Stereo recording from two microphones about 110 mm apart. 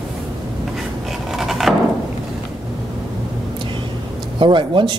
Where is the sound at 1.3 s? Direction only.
Centre (ahead or behind).